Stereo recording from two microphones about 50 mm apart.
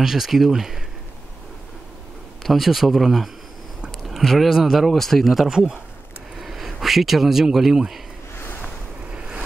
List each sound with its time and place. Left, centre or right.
0.0 s speech: centre
2.4 s speech: centre
8.4 s a sound: left